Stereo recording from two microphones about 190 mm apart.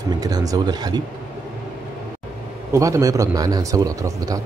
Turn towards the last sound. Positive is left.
turn(degrees=-20)  # may be behind; listen again after turning